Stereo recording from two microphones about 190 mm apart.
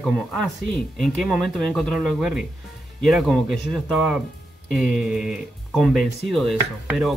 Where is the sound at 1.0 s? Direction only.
Centre (ahead or behind).